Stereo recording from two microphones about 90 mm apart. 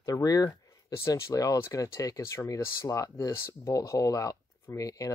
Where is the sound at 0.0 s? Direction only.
40° left (ahead or behind).